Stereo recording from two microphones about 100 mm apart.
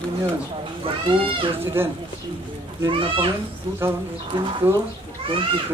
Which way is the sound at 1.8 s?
20° right (ahead or behind).